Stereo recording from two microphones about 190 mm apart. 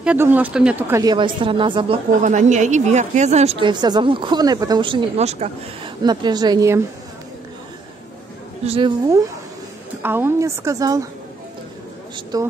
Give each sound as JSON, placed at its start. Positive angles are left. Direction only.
{"t": 0.0, "sound": "a woman's voice", "side_deg": -10}
{"t": 2.2, "sound": "a woman's voice", "side_deg": -40}
{"t": 6.0, "sound": "a woman's voice", "side_deg": -20}
{"t": 8.6, "sound": "a woman's voice", "side_deg": -30}
{"t": 10.0, "sound": "a woman's voice", "side_deg": -10}
{"t": 12.3, "sound": "a woman's voice", "side_deg": -20}